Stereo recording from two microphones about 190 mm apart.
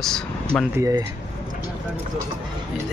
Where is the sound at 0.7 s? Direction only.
15° right (ahead or behind).